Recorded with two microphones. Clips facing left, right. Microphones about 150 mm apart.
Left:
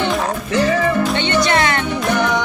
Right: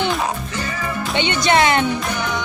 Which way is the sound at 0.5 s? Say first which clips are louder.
Left 11 dB; 75° left (ahead or behind).